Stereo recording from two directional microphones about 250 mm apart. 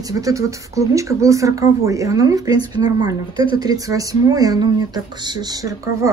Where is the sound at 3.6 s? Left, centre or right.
Centre.